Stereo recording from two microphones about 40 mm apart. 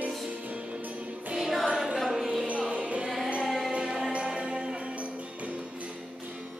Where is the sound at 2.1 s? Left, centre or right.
Centre.